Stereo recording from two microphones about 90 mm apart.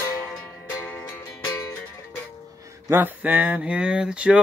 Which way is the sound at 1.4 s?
45° left (ahead or behind).